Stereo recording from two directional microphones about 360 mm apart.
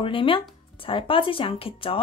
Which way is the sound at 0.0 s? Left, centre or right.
Centre.